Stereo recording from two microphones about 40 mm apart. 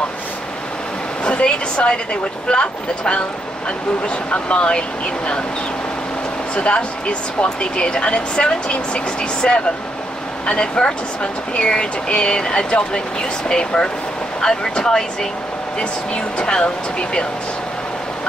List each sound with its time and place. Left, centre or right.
1.2 s speech: left
4.5 s speech: left
6.5 s speech: left; by 15.0 s centre
16.3 s speech: left